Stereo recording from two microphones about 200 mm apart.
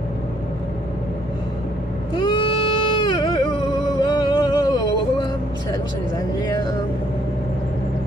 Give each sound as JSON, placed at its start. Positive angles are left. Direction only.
{"t": 2.1, "sound": "baby cry", "side_deg": 25}
{"t": 4.0, "sound": "music", "side_deg": 20}